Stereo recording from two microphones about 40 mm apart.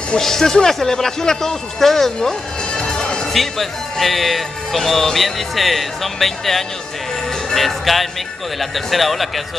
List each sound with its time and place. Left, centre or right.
0.2 s speech: centre
2.1 s music: left
3.3 s speech: centre